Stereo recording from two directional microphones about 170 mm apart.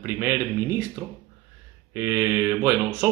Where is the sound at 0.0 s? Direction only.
15° right (ahead or behind).